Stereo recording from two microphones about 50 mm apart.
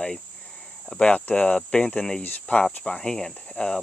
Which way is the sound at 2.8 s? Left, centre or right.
Centre.